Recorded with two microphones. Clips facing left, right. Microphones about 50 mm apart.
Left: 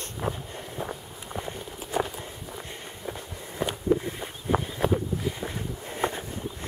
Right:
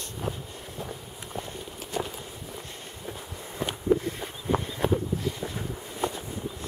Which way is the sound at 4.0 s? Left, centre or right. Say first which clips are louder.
Right 1 dB; centre.